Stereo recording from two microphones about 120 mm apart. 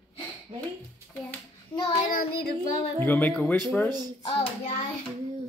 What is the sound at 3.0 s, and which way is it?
Speech, 15° left (ahead or behind).